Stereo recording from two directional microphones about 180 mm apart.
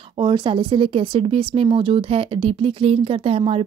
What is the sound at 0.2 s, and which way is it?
Speech, 25° right (ahead or behind).